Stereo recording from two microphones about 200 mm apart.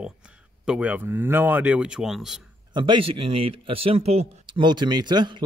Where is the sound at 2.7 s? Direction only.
25° right (ahead or behind).